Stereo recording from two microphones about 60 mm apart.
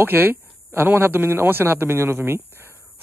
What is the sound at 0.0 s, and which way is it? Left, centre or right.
A man's voice, right.